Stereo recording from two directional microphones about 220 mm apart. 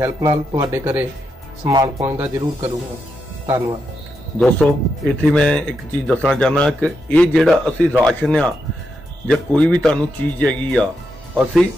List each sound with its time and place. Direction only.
0.0 s speech: 15° right (ahead or behind)
4.4 s speech: 5° left (ahead or behind)